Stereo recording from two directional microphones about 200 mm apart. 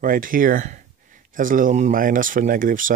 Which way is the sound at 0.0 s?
45° right (ahead or behind).